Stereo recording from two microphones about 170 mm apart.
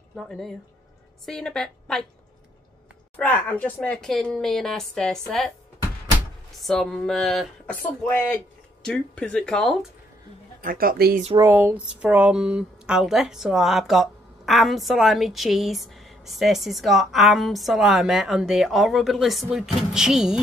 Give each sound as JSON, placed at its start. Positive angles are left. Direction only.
{"t": 0.1, "sound": "speech", "side_deg": 5}
{"t": 3.2, "sound": "speech", "side_deg": 10}
{"t": 6.6, "sound": "speech", "side_deg": 0}
{"t": 10.6, "sound": "a woman's voice", "side_deg": -55}
{"t": 11.3, "sound": "speech", "side_deg": -15}